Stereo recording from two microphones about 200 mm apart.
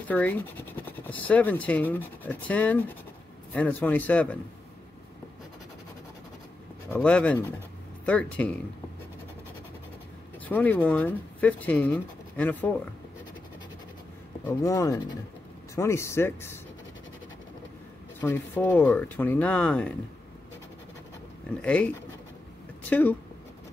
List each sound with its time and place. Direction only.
0.1 s speech: 10° left (ahead or behind)
6.9 s speech: 5° left (ahead or behind)
10.5 s speech: 10° left (ahead or behind)
14.4 s speech: 15° left (ahead or behind)
18.2 s speech: 10° left (ahead or behind)
21.5 s speech: 5° left (ahead or behind)